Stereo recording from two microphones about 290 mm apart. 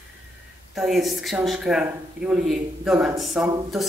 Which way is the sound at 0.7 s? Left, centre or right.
Centre.